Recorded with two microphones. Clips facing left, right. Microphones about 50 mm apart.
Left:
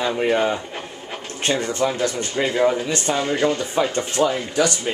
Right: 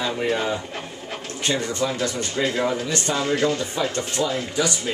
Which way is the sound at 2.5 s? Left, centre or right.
Centre.